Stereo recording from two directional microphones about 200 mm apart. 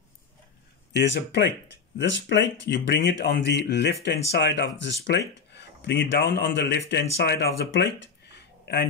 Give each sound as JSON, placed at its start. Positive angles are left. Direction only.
{"t": 0.9, "sound": "speech", "side_deg": 60}